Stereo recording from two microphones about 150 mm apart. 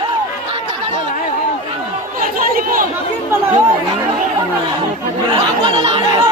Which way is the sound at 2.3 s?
65° right (ahead or behind).